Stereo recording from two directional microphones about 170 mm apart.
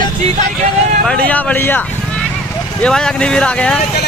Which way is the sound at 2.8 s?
5° left (ahead or behind).